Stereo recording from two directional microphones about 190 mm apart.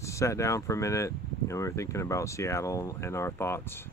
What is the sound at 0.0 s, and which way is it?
Speech, 15° left (ahead or behind).